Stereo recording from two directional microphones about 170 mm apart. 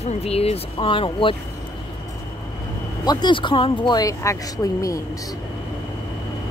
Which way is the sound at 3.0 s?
25° left (ahead or behind).